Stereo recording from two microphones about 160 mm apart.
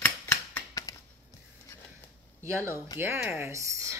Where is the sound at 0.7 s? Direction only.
20° left (ahead or behind).